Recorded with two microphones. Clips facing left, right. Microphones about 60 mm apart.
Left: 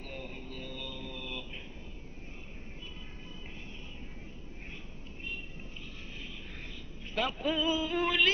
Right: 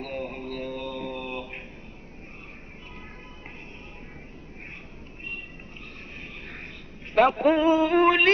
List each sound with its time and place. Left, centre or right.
0.0 s mantra: right
6.1 s vehicle: right
7.2 s a sound: right